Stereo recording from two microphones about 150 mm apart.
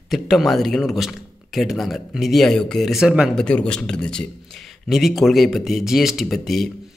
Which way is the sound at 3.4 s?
5° left (ahead or behind).